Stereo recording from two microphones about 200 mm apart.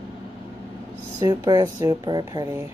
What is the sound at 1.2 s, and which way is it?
Speech, 20° right (ahead or behind).